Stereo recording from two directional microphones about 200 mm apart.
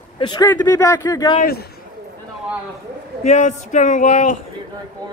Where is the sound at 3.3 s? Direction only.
35° left (ahead or behind).